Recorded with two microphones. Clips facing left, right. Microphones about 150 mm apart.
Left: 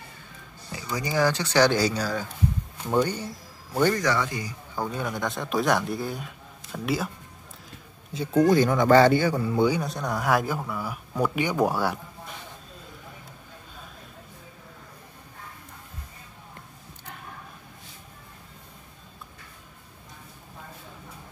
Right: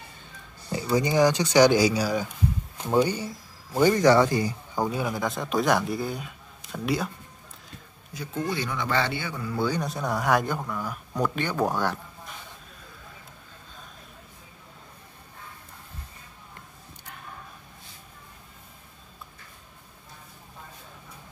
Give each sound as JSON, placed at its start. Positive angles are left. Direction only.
{"t": 0.9, "sound": "speech", "side_deg": -20}
{"t": 3.9, "sound": "speech", "side_deg": -30}
{"t": 4.7, "sound": "speech", "side_deg": -10}
{"t": 8.1, "sound": "speech", "side_deg": 25}
{"t": 8.4, "sound": "speech", "side_deg": 45}
{"t": 9.4, "sound": "a man's voice", "side_deg": 20}
{"t": 9.8, "sound": "speech", "side_deg": 0}